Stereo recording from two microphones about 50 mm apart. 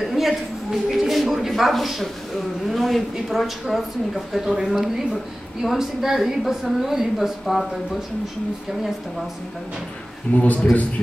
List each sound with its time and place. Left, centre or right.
0.1 s a woman's voice: centre
10.4 s speech: left